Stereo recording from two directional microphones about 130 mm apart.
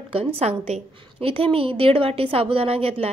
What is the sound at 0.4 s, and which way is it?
A woman's voice, 55° right (ahead or behind).